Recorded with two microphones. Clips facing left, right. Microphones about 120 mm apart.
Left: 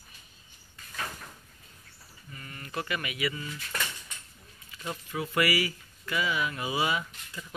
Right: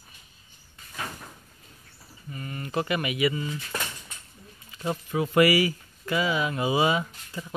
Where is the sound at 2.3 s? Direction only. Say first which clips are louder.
Right 7 dB; 25° right (ahead or behind).